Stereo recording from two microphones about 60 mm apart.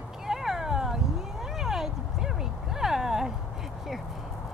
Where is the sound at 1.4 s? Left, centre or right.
Centre.